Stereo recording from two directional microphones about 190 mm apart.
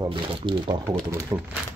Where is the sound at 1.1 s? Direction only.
15° right (ahead or behind).